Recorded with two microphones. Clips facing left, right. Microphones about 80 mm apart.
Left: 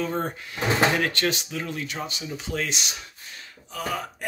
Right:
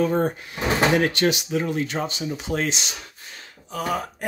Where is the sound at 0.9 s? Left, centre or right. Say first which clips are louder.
Right 5 dB; right.